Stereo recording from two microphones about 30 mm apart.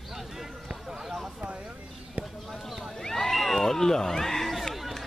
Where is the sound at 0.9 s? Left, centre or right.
Centre.